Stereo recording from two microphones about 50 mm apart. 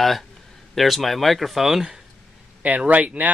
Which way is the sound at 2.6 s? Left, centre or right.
Right.